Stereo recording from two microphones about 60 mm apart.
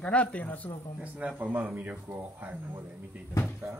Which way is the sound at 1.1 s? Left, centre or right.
Right.